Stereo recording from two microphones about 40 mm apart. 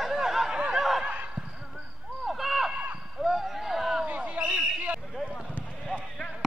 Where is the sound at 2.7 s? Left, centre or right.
Right.